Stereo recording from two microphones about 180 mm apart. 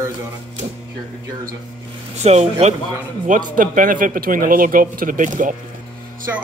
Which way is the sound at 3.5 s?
50° right (ahead or behind).